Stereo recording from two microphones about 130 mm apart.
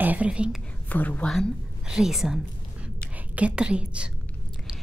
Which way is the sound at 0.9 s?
10° left (ahead or behind).